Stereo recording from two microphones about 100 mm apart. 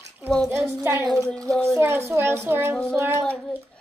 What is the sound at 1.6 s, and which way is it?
A child's voice, 25° right (ahead or behind).